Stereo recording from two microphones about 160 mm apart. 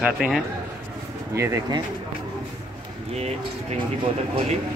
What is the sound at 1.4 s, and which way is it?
Speech, 20° right (ahead or behind).